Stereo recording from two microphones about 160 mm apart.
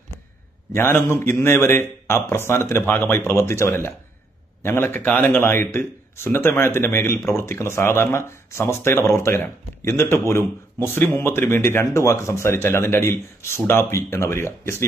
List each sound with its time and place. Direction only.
0.7 s speech: 15° left (ahead or behind)